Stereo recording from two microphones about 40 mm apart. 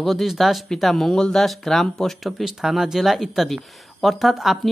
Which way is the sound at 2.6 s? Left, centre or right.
Centre.